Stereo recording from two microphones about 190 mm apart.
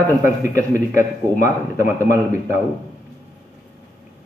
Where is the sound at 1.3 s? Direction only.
45° left (ahead or behind).